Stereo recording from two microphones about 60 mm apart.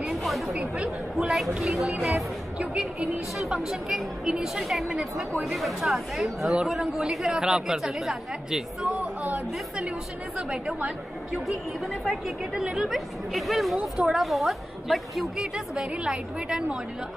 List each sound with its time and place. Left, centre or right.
0.1 s speech: centre
9.0 s a sound: right
9.8 s a woman's voice: centre
12.5 s speech: centre
15.5 s a woman's voice: centre